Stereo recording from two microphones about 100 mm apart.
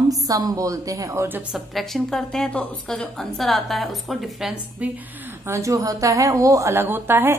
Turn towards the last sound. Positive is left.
turn(degrees=-20)  # may be behind; listen again after turning